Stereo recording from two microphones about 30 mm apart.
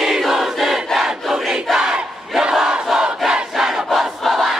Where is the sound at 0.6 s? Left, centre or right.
Centre.